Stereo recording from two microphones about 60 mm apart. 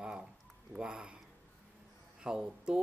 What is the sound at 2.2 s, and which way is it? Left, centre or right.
Speech, centre.